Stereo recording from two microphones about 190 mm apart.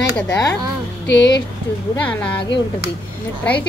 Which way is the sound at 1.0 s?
65° left (ahead or behind).